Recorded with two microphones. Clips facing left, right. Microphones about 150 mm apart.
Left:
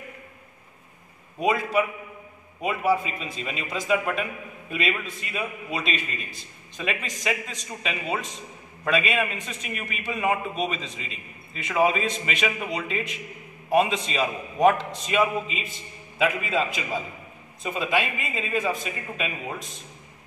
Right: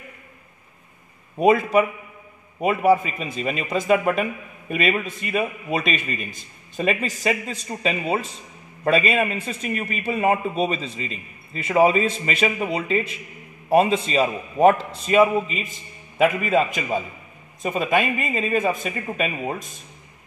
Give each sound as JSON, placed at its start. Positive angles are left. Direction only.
{"t": 1.4, "sound": "a man's voice", "side_deg": -55}
{"t": 8.8, "sound": "speech", "side_deg": -40}
{"t": 10.6, "sound": "a man's voice", "side_deg": 0}
{"t": 11.1, "sound": "a man's voice", "side_deg": -40}